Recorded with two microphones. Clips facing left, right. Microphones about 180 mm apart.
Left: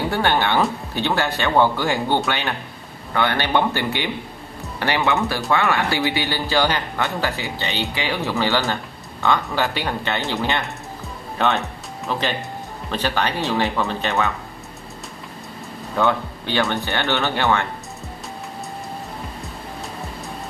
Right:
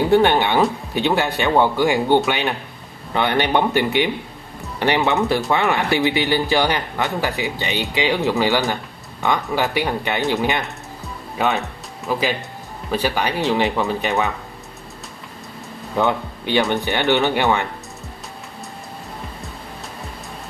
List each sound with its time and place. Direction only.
0.1 s speech: 15° right (ahead or behind)
16.0 s speech: 15° right (ahead or behind)